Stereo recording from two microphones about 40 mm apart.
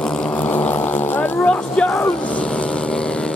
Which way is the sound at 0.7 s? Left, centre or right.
Left.